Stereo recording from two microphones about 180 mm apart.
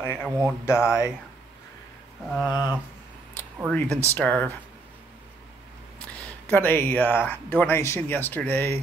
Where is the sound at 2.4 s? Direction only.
25° left (ahead or behind).